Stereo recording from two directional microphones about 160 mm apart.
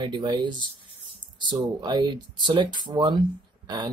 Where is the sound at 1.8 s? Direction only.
25° right (ahead or behind).